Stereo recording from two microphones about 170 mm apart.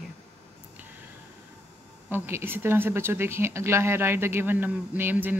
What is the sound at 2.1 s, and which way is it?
Speech, 15° right (ahead or behind).